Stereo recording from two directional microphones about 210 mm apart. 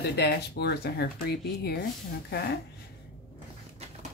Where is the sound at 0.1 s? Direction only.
50° left (ahead or behind).